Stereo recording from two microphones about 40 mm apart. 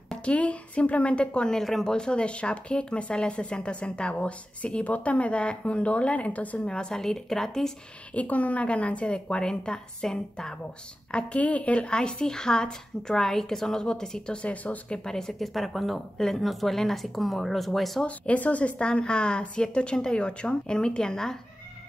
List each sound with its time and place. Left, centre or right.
0.2 s speech: left
1.6 s speech: centre
2.0 s speech: left
6.7 s speech: centre
8.1 s speech: left; by 10.5 s centre
11.1 s speech: left
14.4 s speech: left
15.0 s speech: centre
16.2 s speech: centre
18.0 s speech: left
18.8 s speech: left